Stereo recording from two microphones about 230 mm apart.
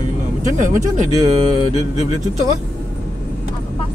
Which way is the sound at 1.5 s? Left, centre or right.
Left.